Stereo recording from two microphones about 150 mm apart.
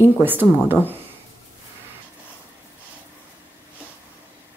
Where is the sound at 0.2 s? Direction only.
15° right (ahead or behind).